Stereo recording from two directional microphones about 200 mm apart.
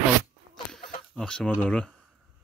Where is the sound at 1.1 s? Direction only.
5° left (ahead or behind).